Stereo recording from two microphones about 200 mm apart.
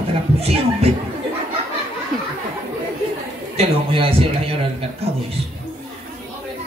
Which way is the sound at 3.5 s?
25° right (ahead or behind).